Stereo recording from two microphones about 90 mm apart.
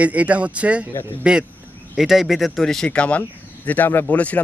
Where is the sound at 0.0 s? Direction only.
15° right (ahead or behind).